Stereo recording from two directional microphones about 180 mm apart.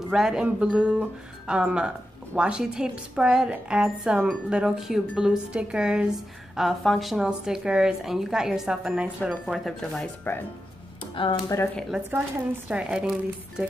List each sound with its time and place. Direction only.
0.1 s speech: 5° right (ahead or behind)
10.3 s speech: 10° left (ahead or behind)
11.4 s speech: 15° left (ahead or behind)
12.1 s speech: 5° right (ahead or behind)